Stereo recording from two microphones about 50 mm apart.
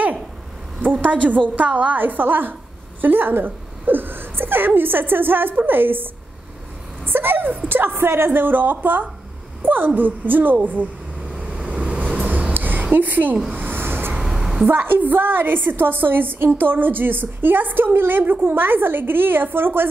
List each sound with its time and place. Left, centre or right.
1.0 s a woman's voice: right
2.0 s a woman's voice: right
7.1 s a woman's voice: right
8.3 s a woman's voice: right
11.4 s vehicle: right
12.5 s a sound: right
12.9 s a woman's voice: right
13.6 s a sound: right
14.2 s a sound: centre
14.7 s a woman's voice: right